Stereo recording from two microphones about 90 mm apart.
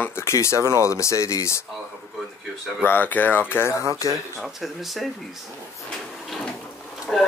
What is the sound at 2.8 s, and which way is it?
Speech, 20° left (ahead or behind).